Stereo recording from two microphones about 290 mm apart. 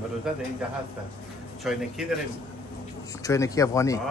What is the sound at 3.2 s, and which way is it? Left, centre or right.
Speech, centre.